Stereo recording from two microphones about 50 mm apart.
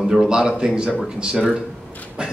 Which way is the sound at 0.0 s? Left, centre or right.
Centre.